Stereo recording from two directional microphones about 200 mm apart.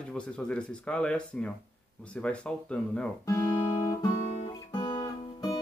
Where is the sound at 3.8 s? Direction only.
15° left (ahead or behind).